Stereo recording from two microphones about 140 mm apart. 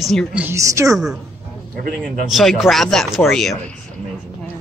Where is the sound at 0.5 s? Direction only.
20° right (ahead or behind).